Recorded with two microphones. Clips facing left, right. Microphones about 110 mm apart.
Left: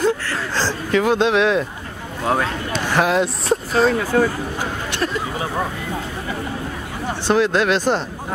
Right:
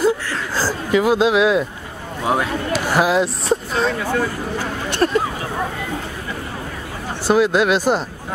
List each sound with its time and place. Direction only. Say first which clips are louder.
0.0 s a sound: right 1 dB; 10° right (ahead or behind)
2.2 s speech: right 1 dB; 10° right (ahead or behind)
5.0 s speech: right 6 dB; 40° right (ahead or behind)
7.2 s speech: right 2 dB; 5° right (ahead or behind)